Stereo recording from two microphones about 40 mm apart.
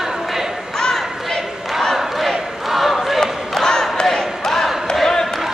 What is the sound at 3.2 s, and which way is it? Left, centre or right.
Crowd, centre.